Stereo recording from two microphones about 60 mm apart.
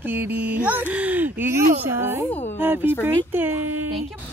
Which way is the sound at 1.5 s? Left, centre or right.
Right.